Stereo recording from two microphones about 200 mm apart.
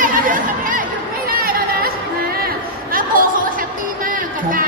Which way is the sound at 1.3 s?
45° right (ahead or behind).